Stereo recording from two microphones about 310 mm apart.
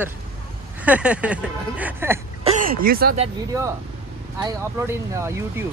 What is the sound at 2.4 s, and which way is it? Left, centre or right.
Speech, right.